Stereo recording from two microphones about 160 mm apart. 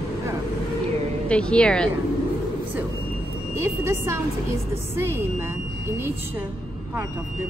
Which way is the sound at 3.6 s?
15° right (ahead or behind).